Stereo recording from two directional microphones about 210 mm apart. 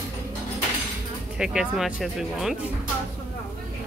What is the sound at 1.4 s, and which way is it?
Speech, 5° right (ahead or behind).